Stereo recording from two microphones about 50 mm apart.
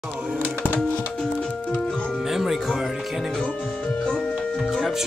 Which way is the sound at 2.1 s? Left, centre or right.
Centre.